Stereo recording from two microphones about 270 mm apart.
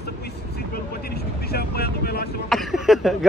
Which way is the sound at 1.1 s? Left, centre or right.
Left.